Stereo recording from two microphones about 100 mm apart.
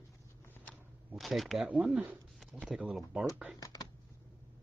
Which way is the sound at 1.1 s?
Centre (ahead or behind).